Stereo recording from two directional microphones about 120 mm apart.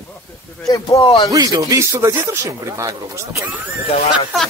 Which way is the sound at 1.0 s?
45° left (ahead or behind).